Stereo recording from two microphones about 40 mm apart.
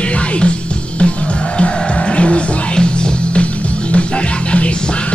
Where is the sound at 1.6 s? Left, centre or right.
Left.